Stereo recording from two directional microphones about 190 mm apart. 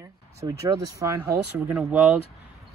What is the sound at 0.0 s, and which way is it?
Speech, 15° right (ahead or behind).